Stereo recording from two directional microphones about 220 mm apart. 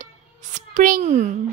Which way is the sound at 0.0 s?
35° right (ahead or behind).